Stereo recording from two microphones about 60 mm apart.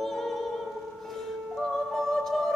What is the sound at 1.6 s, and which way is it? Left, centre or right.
Music, centre.